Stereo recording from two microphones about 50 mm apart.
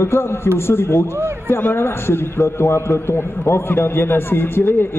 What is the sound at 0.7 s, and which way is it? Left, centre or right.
A man's voice, left.